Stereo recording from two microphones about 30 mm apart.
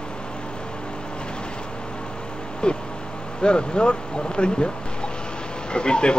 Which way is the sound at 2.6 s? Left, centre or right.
Left.